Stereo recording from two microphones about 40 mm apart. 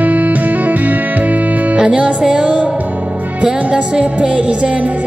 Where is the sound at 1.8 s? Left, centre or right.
Centre.